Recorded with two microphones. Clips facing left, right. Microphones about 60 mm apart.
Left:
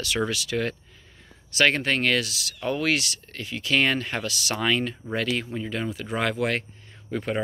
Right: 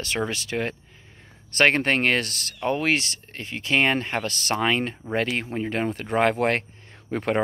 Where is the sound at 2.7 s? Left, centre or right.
Right.